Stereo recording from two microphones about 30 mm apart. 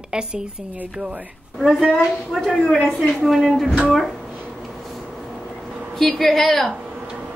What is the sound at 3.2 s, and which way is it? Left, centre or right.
Speech, centre.